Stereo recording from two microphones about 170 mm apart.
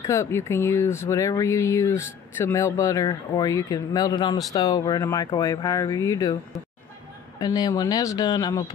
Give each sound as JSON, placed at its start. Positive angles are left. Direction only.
{"t": 0.0, "sound": "speech", "side_deg": 15}
{"t": 7.3, "sound": "speech", "side_deg": 25}